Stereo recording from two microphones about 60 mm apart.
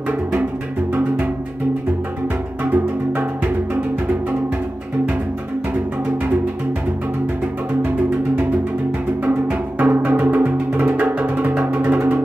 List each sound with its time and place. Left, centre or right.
0.9 s music: right
2.6 s music: right
9.8 s music: right
10.7 s music: right
11.0 s music: right